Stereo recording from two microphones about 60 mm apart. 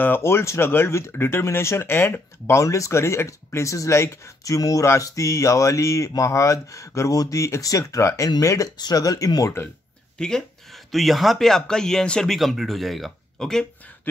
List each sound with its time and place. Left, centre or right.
0.2 s speech: left
4.5 s speech: left
5.0 s speech: left
7.6 s speech: left
10.1 s speech: centre
12.4 s speech: centre